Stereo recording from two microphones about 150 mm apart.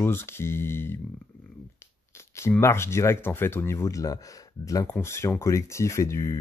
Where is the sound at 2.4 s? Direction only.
20° left (ahead or behind).